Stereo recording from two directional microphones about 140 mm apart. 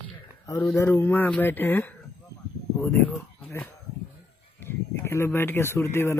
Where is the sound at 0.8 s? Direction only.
15° left (ahead or behind).